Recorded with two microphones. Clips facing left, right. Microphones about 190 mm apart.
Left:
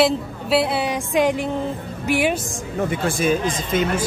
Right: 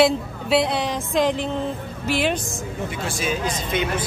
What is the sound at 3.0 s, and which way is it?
A man's voice, 50° left (ahead or behind).